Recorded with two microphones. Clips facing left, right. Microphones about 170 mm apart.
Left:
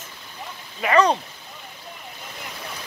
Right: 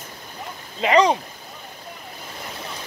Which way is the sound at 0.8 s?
20° right (ahead or behind).